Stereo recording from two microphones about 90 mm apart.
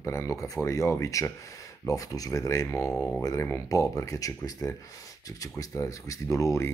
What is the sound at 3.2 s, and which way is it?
Speech, 40° left (ahead or behind).